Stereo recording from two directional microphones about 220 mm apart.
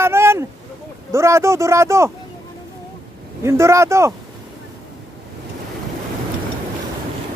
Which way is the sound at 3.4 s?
10° right (ahead or behind).